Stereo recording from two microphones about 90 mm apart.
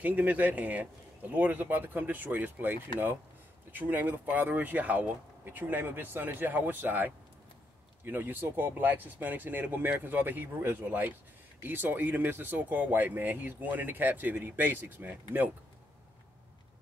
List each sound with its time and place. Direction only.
0.0 s speech: 15° right (ahead or behind)